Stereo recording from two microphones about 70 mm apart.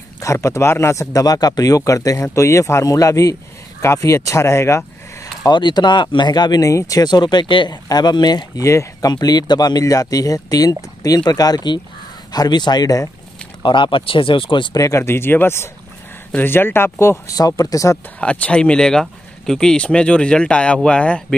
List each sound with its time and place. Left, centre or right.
0.2 s speech: left
1.2 s speech: left
5.4 s speech: left
6.6 s speech: left
8.5 s speech: left
9.0 s speech: left
14.7 s speech: left
15.0 s speech: left
17.3 s speech: left
18.2 s speech: centre